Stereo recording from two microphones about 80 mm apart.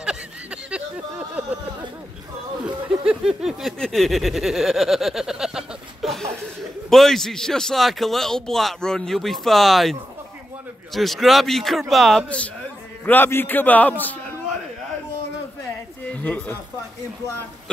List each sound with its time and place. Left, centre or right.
0.0 s a sound: centre
2.6 s speech: centre
3.8 s a sound: centre
6.9 s a man's voice: centre
13.0 s a man's voice: left
16.1 s speech: centre